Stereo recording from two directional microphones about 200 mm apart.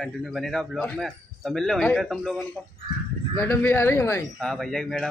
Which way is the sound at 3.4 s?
10° left (ahead or behind).